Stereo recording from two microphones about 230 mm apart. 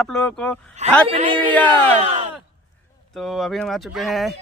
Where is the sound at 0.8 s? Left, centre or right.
Right.